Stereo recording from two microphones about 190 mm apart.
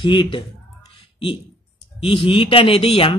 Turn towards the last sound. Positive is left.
turn(degrees=30)  # may be behind; listen again after turning